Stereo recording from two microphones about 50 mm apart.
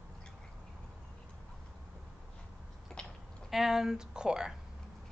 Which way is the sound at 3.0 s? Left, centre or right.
Centre.